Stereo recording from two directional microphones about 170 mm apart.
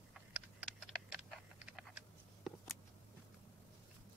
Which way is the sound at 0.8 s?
5° right (ahead or behind).